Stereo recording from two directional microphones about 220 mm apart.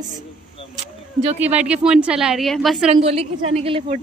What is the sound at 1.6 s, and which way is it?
Speech, 5° right (ahead or behind).